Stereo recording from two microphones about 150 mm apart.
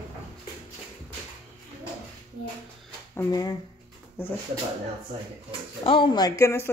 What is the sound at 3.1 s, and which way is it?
Speech, 20° left (ahead or behind).